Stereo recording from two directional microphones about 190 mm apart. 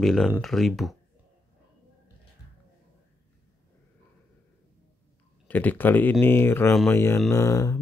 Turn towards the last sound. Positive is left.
turn(degrees=15)  # may be behind; listen again after turning